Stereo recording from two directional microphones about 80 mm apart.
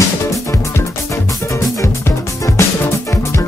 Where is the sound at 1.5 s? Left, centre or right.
Left.